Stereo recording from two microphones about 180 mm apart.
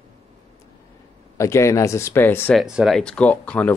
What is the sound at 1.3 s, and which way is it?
Speech, 15° left (ahead or behind).